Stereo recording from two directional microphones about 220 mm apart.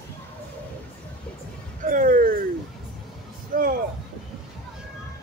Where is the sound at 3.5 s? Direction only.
40° right (ahead or behind).